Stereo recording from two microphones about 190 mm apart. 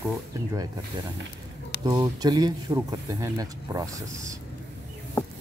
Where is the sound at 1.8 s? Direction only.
20° right (ahead or behind).